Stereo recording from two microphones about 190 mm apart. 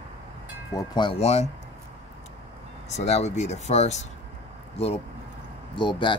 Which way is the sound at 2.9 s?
35° left (ahead or behind).